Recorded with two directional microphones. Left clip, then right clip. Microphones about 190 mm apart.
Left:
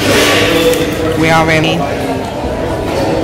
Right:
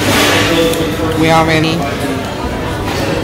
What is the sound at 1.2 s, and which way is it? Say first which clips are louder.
Speech: even; centre (ahead or behind).